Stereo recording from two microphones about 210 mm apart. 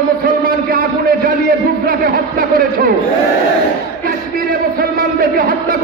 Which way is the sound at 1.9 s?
40° right (ahead or behind).